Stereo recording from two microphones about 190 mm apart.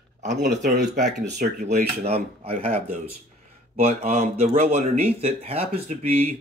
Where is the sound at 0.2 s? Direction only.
40° right (ahead or behind).